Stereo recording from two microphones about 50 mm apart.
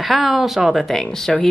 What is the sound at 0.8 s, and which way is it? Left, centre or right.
Speech, centre.